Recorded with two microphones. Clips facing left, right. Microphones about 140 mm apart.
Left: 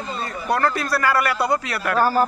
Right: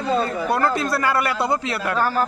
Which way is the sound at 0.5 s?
20° right (ahead or behind).